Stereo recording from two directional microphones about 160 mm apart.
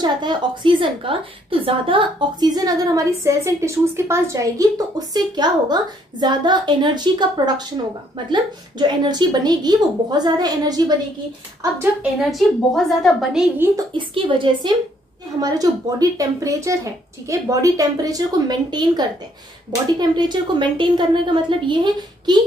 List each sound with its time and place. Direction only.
0.0 s a woman's voice: 30° right (ahead or behind)
11.8 s a woman's voice: 5° right (ahead or behind)
13.9 s a woman's voice: 30° right (ahead or behind)